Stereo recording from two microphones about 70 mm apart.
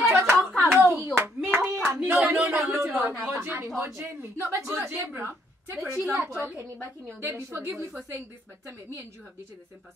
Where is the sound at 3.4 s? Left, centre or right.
Right.